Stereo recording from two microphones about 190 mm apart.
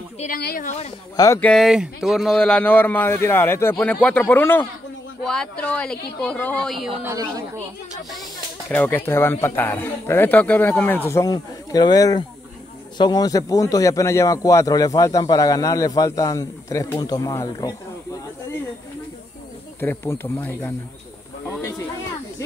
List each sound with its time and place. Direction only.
0.2 s a woman's voice: 50° left (ahead or behind)
0.7 s speech: 35° left (ahead or behind)
1.1 s speech: 15° left (ahead or behind)
1.4 s speech: centre (ahead or behind)
7.1 s a woman's voice: 20° right (ahead or behind)
8.6 s speech: 10° left (ahead or behind)
19.8 s speech: 10° left (ahead or behind)